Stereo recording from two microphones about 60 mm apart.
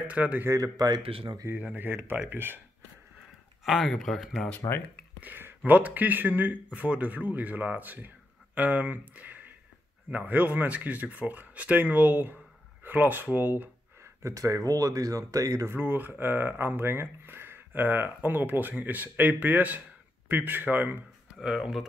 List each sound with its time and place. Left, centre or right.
0.0 s speech: right
0.6 s speech: right
1.5 s speech: right
3.6 s speech: centre
4.6 s speech: left
5.2 s a man's voice: right
14.0 s speech: right
15.6 s speech: right
21.4 s speech: centre